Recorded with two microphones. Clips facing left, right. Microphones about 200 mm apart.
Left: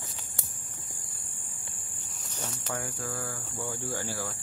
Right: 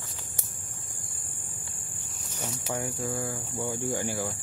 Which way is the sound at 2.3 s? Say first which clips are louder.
Right 3 dB; 15° right (ahead or behind).